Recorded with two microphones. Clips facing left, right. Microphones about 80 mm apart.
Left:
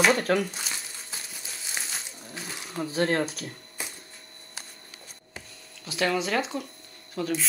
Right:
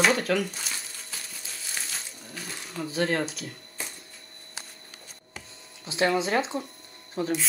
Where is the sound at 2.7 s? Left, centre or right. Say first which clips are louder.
Left 1 dB; left.